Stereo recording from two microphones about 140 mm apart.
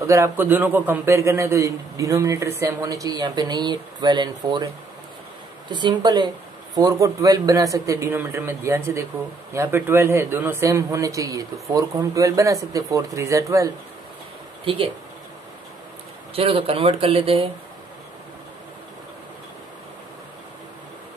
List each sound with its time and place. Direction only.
0.0 s speech: 20° right (ahead or behind)
5.7 s speech: 35° right (ahead or behind)
14.6 s speech: 40° right (ahead or behind)
16.3 s speech: 45° right (ahead or behind)